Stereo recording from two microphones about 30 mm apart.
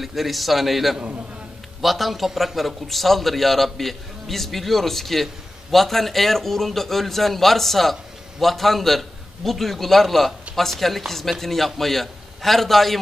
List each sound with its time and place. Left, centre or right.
0.0 s a man's voice: centre